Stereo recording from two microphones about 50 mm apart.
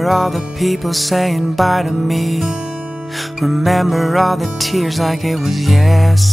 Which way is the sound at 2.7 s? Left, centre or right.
Right.